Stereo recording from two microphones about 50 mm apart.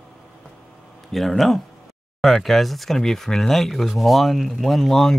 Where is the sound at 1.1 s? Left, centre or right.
Centre.